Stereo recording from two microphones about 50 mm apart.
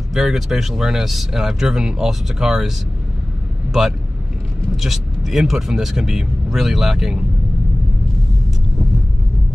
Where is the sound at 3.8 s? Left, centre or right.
Centre.